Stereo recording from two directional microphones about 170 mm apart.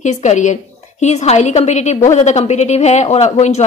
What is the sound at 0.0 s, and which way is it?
A woman's voice, 45° left (ahead or behind).